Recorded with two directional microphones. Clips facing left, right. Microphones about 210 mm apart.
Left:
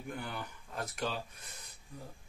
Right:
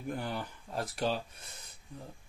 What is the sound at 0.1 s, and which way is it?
Speech, 35° right (ahead or behind).